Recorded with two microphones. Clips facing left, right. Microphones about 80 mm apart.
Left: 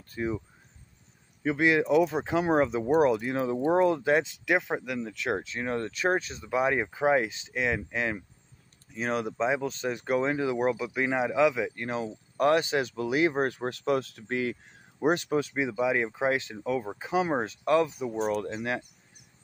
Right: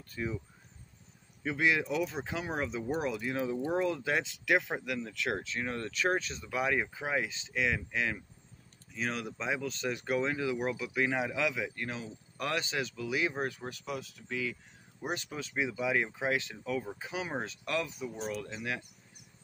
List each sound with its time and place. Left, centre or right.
0.1 s speech: left
1.4 s speech: left
4.5 s speech: left
12.5 s speech: left
15.5 s speech: left
18.1 s speech: left